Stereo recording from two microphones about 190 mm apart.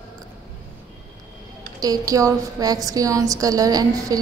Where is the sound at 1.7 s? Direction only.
20° right (ahead or behind).